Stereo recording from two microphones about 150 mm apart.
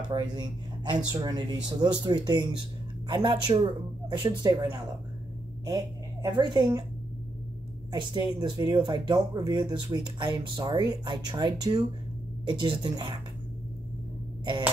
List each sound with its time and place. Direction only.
0.1 s speech: 30° right (ahead or behind)
6.3 s speech: 25° right (ahead or behind)
7.9 s speech: 25° right (ahead or behind)